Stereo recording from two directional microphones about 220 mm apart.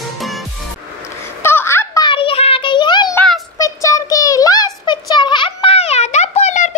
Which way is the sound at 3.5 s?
15° left (ahead or behind).